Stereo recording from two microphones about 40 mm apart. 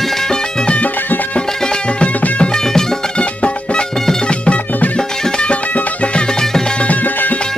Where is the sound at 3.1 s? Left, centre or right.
Left.